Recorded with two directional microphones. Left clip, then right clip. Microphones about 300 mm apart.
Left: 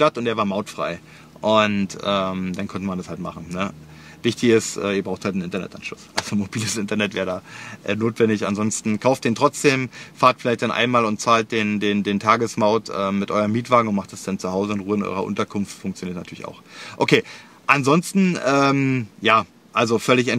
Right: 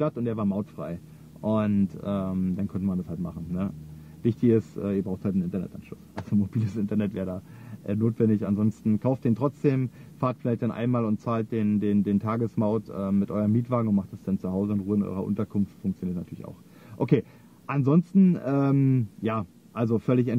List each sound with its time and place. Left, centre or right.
0.0 s speech: centre
4.2 s speech: centre